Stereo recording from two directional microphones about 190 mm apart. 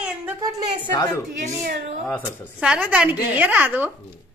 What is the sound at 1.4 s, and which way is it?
Speech, 55° right (ahead or behind).